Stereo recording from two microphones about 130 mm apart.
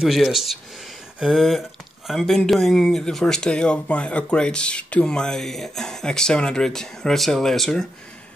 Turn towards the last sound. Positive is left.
turn(degrees=5)  # may be behind; listen again after turning